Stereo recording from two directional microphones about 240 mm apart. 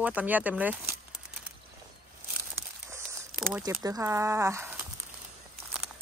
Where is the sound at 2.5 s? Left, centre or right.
Centre.